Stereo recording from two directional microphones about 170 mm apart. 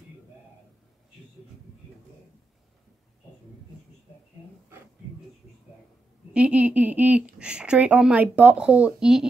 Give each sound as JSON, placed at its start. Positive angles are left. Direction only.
{"t": 6.3, "sound": "speech", "side_deg": -5}